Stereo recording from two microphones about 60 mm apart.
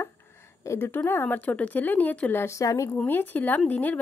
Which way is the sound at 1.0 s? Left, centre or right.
Left.